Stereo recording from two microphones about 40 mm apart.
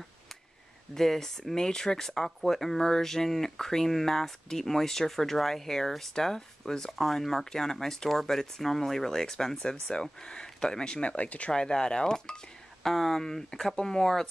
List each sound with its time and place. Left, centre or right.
0.9 s speech: centre; by 11.5 s left
11.5 s speech: centre
12.8 s speech: centre